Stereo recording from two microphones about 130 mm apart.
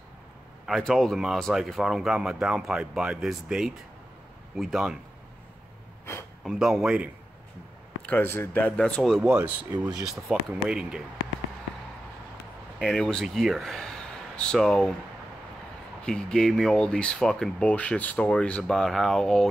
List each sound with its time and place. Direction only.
0.7 s speech: centre (ahead or behind)
6.1 s speech: 20° left (ahead or behind)
6.4 s speech: 5° right (ahead or behind)
8.1 s speech: 15° left (ahead or behind); by 11.0 s 5° right (ahead or behind)
12.7 s speech: 5° left (ahead or behind)
16.1 s speech: 5° left (ahead or behind)